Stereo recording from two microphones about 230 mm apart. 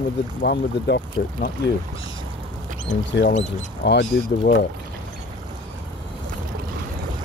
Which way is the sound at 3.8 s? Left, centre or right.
Left.